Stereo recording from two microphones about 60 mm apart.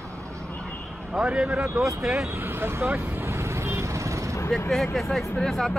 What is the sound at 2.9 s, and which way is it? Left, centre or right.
Vehicle, right.